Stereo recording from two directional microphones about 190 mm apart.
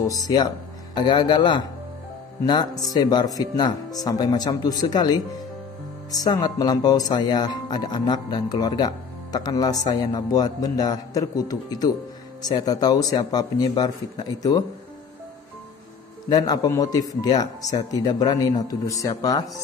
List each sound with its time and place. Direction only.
0.9 s speech: 25° left (ahead or behind)
16.3 s speech: 20° left (ahead or behind)